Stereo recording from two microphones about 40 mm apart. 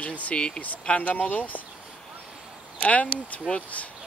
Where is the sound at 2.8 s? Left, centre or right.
Left.